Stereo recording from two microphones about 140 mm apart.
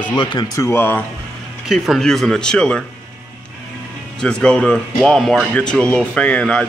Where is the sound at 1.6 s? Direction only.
Centre (ahead or behind).